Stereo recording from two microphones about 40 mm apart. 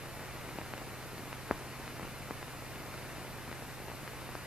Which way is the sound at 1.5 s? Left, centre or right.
Centre.